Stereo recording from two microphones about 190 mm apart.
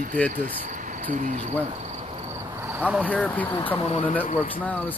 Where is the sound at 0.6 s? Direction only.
45° right (ahead or behind).